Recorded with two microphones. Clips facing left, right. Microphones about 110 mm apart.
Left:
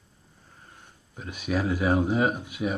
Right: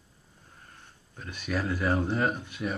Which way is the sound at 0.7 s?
15° left (ahead or behind).